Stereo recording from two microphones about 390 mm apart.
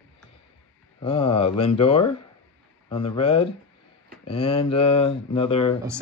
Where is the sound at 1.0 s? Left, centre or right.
Centre.